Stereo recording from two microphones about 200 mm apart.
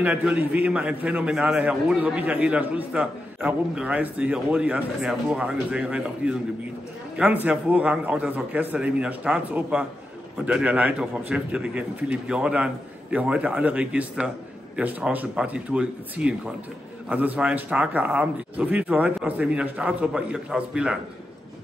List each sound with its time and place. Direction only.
0.0 s a man's voice: 5° right (ahead or behind)